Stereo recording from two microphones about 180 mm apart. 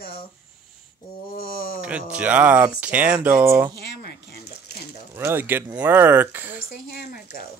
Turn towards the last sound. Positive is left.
turn(degrees=55)  # may be behind; listen again after turning